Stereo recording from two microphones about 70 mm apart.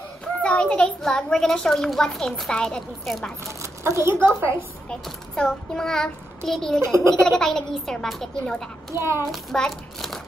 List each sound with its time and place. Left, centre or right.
0.4 s a child's voice: centre
3.6 s a woman's voice: right
5.0 s a child's voice: centre
8.9 s a child's voice: right
9.3 s a child's voice: centre